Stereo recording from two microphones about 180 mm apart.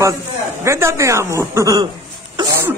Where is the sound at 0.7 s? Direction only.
15° right (ahead or behind).